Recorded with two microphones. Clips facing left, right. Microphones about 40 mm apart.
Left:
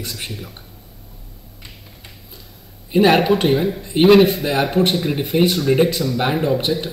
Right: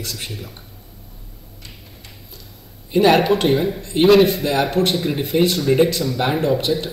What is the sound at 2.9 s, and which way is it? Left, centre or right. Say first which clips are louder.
A man's voice: even; centre.